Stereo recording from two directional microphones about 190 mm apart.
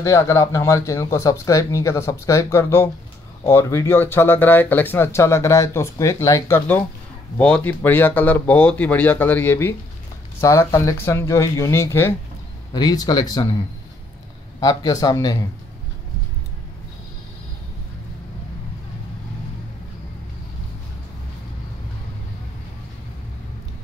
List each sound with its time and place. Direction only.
0.0 s speech: 15° left (ahead or behind)
14.6 s speech: 20° left (ahead or behind)